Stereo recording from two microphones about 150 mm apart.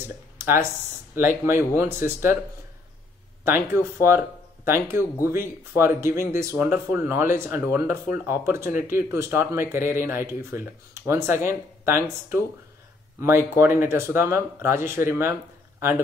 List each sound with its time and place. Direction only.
0.0 s speech: 15° right (ahead or behind)
3.4 s speech: 15° right (ahead or behind)